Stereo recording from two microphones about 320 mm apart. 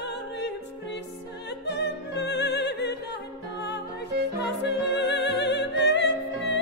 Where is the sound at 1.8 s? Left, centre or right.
Left.